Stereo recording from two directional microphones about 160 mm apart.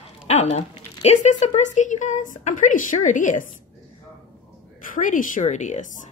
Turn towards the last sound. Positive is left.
turn(degrees=50)  # may be behind; listen again after turning